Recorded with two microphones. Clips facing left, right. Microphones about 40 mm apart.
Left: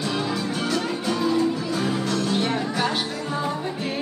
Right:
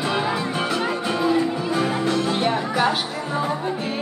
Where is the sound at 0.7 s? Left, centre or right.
Right.